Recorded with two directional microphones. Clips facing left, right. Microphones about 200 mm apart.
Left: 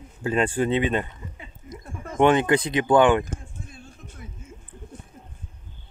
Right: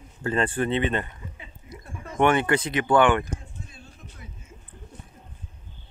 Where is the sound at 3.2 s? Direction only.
50° left (ahead or behind).